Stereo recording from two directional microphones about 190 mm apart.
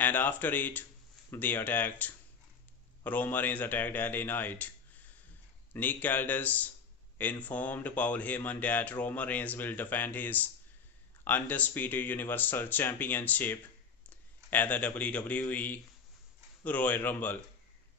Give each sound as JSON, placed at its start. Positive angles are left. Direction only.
{"t": 0.0, "sound": "speech", "side_deg": 10}
{"t": 5.7, "sound": "a man's voice", "side_deg": 10}